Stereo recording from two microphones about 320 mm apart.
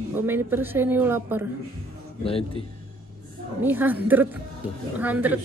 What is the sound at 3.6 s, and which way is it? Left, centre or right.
Speech, centre.